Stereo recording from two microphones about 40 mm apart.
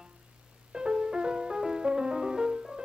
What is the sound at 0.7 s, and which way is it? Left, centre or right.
Music, centre.